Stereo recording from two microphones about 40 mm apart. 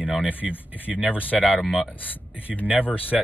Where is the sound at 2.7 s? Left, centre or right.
Right.